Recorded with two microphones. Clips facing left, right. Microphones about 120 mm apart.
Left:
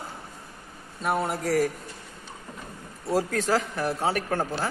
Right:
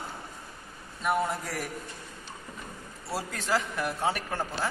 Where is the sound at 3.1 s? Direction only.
45° left (ahead or behind).